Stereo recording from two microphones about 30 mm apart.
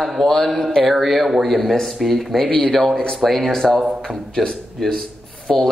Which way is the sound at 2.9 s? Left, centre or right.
Left.